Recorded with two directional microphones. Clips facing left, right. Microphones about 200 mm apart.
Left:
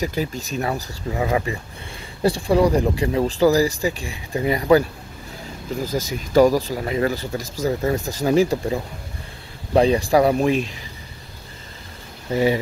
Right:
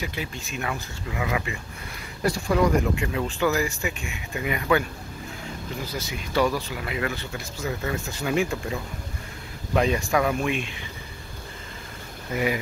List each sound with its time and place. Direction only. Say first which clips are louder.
0.0 s speech: left 8 dB; 40° left (ahead or behind)
5.9 s speech: left 9 dB; 40° left (ahead or behind)
12.3 s speech: left 7 dB; 30° left (ahead or behind)